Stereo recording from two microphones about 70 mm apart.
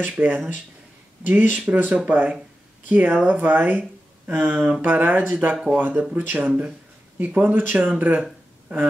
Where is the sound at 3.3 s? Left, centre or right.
Right.